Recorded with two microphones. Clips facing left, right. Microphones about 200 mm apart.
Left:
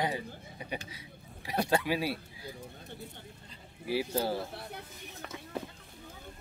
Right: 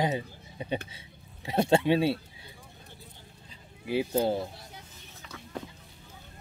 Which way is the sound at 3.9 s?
20° right (ahead or behind).